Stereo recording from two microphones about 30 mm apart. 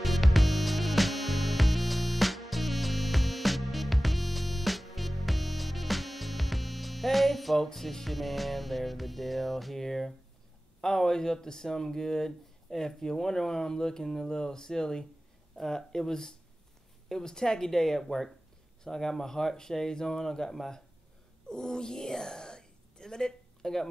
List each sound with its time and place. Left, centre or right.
0.0 s music: centre
9.8 s speech: centre
17.6 s speech: centre
21.5 s whispering: left